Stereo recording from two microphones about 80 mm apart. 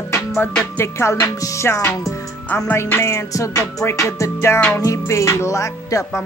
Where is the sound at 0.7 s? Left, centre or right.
Left.